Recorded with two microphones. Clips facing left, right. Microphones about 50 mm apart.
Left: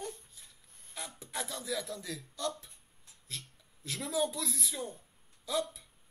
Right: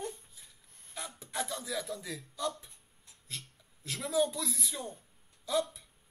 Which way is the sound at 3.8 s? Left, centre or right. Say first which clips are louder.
Right 3 dB; centre.